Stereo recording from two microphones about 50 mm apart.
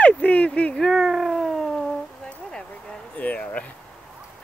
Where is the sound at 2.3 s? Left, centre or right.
Centre.